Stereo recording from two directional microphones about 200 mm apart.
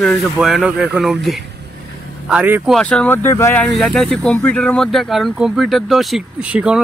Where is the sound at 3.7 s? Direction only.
Centre (ahead or behind).